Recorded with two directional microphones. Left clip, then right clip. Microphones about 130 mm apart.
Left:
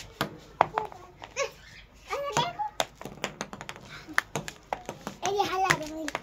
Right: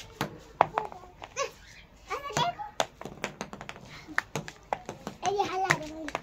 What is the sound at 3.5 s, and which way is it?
Tap, 50° left (ahead or behind).